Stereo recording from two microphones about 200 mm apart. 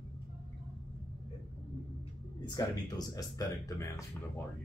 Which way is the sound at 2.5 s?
20° left (ahead or behind).